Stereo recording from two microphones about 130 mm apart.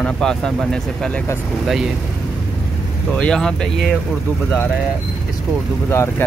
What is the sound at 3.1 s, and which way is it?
Speech, 5° left (ahead or behind).